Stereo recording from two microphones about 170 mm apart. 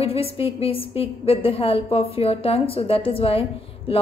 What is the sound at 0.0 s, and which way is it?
Speech, 35° left (ahead or behind).